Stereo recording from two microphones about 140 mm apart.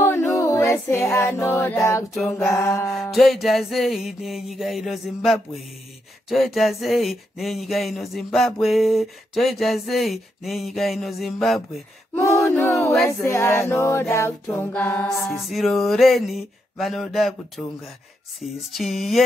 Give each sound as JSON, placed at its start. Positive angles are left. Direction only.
{"t": 0.0, "sound": "a capella", "side_deg": 15}
{"t": 2.5, "sound": "music", "side_deg": 20}
{"t": 2.9, "sound": "speech", "side_deg": 0}
{"t": 12.4, "sound": "a sound", "side_deg": 20}
{"t": 13.0, "sound": "a capella", "side_deg": 20}
{"t": 15.2, "sound": "speech", "side_deg": 0}
{"t": 18.7, "sound": "speech", "side_deg": 0}